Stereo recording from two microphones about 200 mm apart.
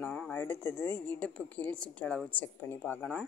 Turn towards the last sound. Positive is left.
turn(degrees=10)  # may be behind; listen again after turning